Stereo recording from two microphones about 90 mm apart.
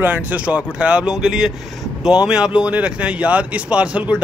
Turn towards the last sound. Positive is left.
turn(degrees=-15)  # may be behind; listen again after turning